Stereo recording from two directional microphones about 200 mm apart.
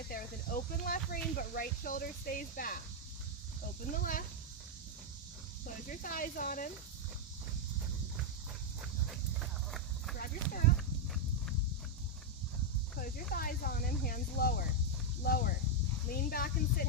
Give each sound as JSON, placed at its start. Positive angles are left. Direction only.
{"t": 0.7, "sound": "a sound", "side_deg": 45}
{"t": 3.9, "sound": "speech", "side_deg": 45}
{"t": 5.9, "sound": "speech", "side_deg": 45}
{"t": 9.1, "sound": "clip-clop", "side_deg": 0}
{"t": 10.1, "sound": "speech", "side_deg": 45}
{"t": 13.3, "sound": "speech", "side_deg": 45}